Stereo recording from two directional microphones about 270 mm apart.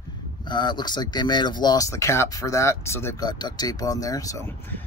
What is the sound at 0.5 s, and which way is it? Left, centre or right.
Speech, centre.